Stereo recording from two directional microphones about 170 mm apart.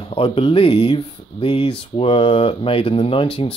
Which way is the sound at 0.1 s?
35° left (ahead or behind).